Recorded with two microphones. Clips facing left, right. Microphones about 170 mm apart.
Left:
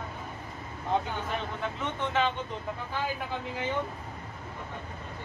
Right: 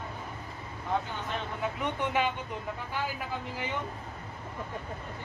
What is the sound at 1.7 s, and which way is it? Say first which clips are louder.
Speech: left 1 dB; 10° right (ahead or behind).